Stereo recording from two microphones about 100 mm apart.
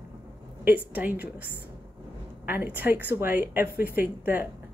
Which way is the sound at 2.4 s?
20° right (ahead or behind).